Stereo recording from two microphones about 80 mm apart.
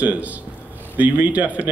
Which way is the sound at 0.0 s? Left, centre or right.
Centre.